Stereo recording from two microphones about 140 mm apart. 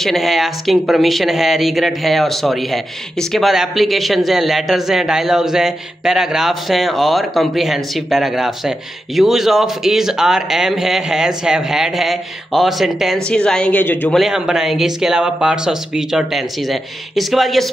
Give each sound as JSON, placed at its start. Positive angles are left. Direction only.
{"t": 0.0, "sound": "speech", "side_deg": 0}
{"t": 14.1, "sound": "speech", "side_deg": -5}